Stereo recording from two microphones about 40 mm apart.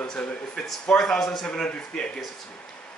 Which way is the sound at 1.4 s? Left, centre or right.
Left.